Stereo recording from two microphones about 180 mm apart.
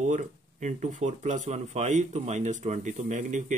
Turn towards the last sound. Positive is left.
turn(degrees=-40)  # may be behind; listen again after turning